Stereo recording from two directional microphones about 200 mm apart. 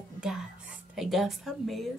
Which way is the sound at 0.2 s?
5° right (ahead or behind).